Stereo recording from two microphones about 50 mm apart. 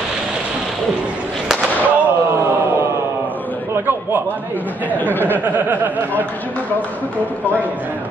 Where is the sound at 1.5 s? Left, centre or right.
Centre.